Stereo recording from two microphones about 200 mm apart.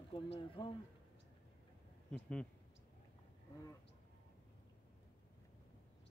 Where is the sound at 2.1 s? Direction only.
5° left (ahead or behind).